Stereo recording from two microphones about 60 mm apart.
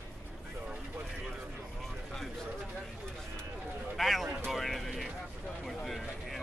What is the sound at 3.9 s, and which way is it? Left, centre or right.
Speech, centre.